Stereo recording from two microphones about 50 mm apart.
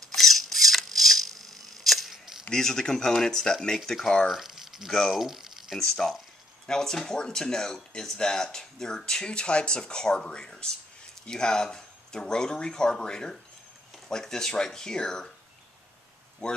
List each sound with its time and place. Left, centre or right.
0.1 s camera: centre
2.5 s speech: centre
4.3 s crumpling: centre
5.1 s a sound: centre
5.8 s speech: centre
16.4 s speech: centre